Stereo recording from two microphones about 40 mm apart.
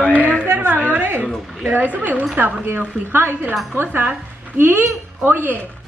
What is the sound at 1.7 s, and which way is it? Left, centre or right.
Speech, right.